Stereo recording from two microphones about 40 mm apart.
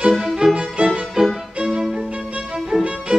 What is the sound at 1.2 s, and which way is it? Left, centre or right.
Violin, centre.